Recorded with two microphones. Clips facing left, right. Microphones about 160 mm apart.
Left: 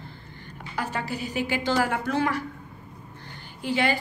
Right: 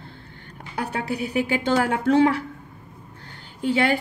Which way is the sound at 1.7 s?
60° right (ahead or behind).